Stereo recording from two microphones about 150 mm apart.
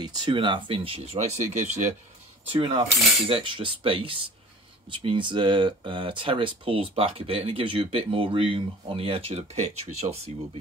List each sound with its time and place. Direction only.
0.0 s speech: 30° right (ahead or behind); by 1.9 s 50° right (ahead or behind)
2.5 s speech: 35° right (ahead or behind)